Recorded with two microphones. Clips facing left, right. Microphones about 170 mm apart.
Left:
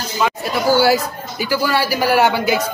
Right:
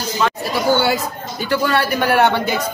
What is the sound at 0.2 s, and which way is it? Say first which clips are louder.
A man's voice: left 1 dB; 5° left (ahead or behind).